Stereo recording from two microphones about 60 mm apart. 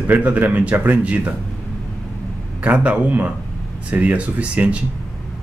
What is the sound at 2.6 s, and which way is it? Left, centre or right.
A man's voice, right.